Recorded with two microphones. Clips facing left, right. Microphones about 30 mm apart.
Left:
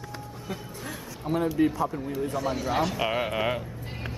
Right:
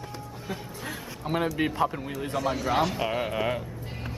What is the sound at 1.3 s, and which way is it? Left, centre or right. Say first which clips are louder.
Speech: left 1 dB; right.